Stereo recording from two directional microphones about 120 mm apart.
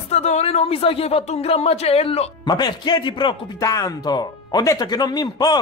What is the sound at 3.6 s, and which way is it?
Speech, 25° left (ahead or behind).